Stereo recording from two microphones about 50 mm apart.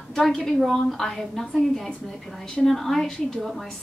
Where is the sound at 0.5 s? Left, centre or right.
Centre.